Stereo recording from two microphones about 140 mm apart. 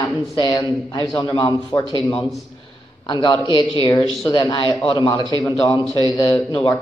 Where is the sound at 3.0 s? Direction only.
30° left (ahead or behind).